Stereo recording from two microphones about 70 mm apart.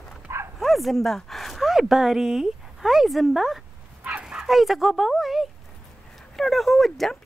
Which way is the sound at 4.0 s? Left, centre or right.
Centre.